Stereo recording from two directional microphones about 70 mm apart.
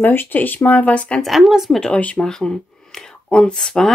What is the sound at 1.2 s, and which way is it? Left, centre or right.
Speech, centre.